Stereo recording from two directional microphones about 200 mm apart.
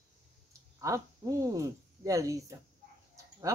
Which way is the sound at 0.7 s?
15° right (ahead or behind).